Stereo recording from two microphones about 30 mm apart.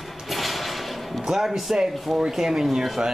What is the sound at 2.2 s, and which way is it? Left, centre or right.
Speech, centre.